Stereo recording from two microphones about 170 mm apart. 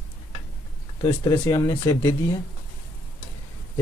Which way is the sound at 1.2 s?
20° left (ahead or behind).